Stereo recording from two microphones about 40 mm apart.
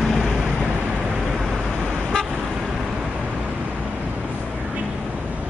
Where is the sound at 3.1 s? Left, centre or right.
Right.